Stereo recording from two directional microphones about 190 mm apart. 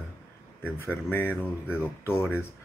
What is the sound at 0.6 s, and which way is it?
Speech, 10° left (ahead or behind).